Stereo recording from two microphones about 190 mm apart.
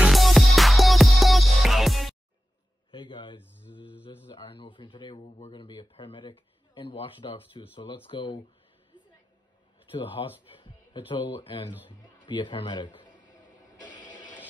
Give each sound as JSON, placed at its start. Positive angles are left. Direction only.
{"t": 0.0, "sound": "music", "side_deg": 0}
{"t": 2.9, "sound": "a sound", "side_deg": 25}
{"t": 3.5, "sound": "speech", "side_deg": -5}
{"t": 4.3, "sound": "speech", "side_deg": 30}
{"t": 8.9, "sound": "a sound", "side_deg": -5}
{"t": 9.9, "sound": "speech", "side_deg": 25}